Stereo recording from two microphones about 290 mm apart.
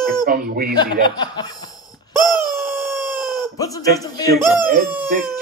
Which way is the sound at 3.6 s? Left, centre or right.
Centre.